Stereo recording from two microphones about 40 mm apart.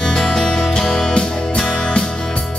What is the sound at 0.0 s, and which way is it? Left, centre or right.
Music, centre.